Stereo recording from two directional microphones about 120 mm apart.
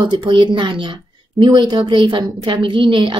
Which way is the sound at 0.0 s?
40° right (ahead or behind).